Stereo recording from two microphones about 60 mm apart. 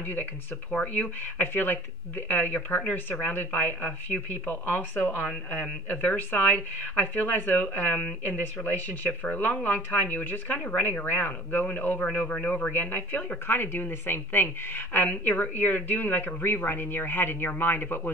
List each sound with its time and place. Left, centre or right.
0.0 s speech: left